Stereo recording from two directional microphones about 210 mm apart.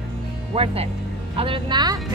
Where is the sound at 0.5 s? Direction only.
25° right (ahead or behind).